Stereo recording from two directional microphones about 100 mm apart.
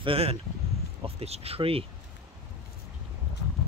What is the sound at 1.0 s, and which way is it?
Speech, 85° right.